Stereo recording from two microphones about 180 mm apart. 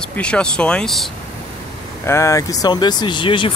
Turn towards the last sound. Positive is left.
turn(degrees=30)  # may be behind; listen again after turning